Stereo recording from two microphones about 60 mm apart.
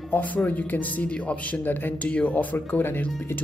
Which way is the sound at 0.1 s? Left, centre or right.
Left.